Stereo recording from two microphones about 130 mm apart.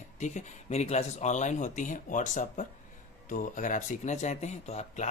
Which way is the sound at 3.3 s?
85° left.